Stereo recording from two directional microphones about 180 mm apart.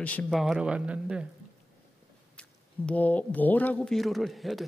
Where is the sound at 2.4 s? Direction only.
5° left (ahead or behind).